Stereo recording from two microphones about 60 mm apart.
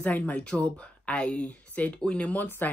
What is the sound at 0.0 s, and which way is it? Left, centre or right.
Speech, left.